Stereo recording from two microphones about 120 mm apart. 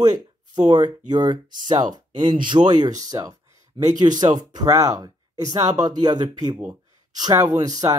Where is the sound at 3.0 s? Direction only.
30° right (ahead or behind).